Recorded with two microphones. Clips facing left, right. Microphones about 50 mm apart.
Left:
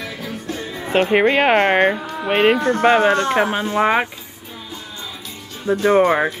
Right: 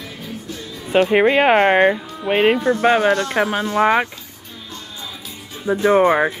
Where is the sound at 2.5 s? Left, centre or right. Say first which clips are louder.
Even; left.